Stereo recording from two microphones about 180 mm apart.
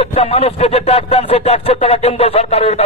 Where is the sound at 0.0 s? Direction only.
35° left (ahead or behind).